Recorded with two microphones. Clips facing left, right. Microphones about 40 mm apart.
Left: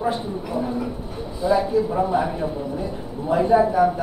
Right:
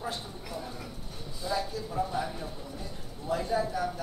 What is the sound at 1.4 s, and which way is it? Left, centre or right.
A man's voice, left.